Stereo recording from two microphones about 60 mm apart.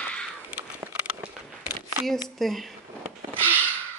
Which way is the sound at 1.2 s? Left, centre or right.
Centre.